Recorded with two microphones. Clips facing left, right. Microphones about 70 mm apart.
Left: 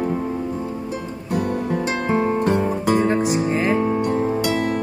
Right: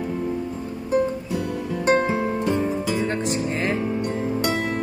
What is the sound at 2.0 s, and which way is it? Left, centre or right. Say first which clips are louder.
Music: left 4 dB; left.